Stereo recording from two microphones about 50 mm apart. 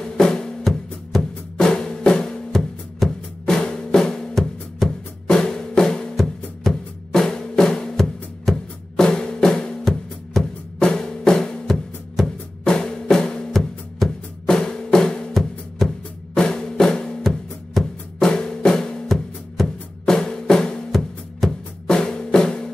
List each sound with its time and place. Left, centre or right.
0.0 s drum: centre
1.6 s drum: centre
5.2 s music: centre
9.0 s drum: centre
10.8 s music: centre
12.6 s drum: centre
13.6 s music: centre
14.4 s drum: centre
15.8 s drum: centre